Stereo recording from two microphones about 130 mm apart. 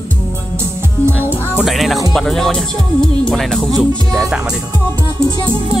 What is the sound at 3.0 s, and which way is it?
Speech, 5° left (ahead or behind).